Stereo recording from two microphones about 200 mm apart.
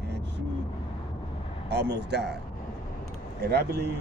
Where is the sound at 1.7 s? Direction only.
55° right (ahead or behind).